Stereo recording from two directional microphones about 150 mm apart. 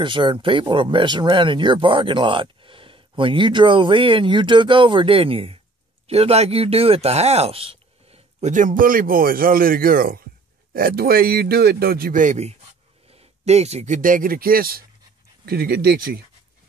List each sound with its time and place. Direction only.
0.0 s a man's voice: 35° right (ahead or behind); by 16.0 s 90° right